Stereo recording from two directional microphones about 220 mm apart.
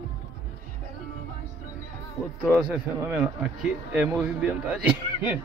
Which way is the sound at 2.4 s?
5° right (ahead or behind).